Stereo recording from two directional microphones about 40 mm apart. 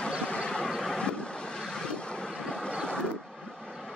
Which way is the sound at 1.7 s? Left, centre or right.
Centre.